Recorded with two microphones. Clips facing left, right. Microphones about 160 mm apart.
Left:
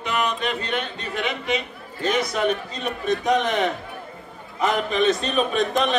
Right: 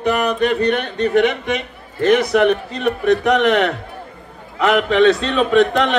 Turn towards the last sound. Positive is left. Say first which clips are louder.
# right 7 dB
turn(degrees=-85)